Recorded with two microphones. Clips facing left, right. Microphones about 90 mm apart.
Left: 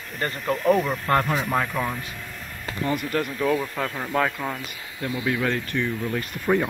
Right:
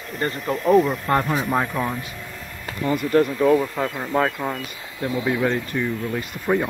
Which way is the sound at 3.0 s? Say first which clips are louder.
Right 10 dB; 30° right (ahead or behind).